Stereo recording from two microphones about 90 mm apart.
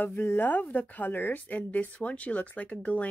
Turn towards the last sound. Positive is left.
turn(degrees=15)  # may be behind; listen again after turning